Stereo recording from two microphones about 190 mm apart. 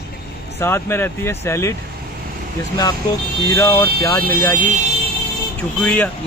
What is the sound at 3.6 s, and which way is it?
Speech, 15° left (ahead or behind).